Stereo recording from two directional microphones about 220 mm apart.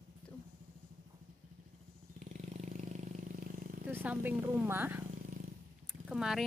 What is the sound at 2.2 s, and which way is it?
Vehicle, 35° right (ahead or behind).